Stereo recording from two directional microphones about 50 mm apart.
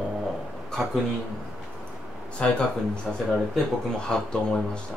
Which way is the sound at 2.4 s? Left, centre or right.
Left.